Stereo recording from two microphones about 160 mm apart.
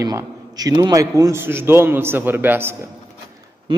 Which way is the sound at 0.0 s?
20° right (ahead or behind).